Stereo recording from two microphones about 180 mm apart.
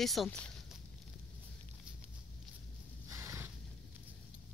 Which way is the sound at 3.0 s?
15° right (ahead or behind).